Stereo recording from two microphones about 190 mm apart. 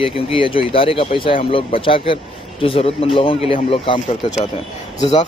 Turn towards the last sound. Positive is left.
turn(degrees=20)  # may be behind; listen again after turning